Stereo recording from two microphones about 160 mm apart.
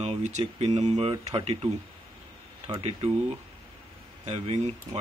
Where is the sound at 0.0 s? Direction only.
45° right (ahead or behind).